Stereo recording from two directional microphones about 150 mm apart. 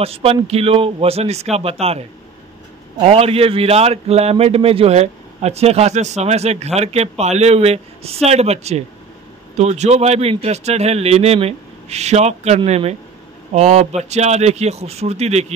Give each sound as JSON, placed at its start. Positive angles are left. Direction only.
{"t": 0.0, "sound": "a man's voice", "side_deg": -40}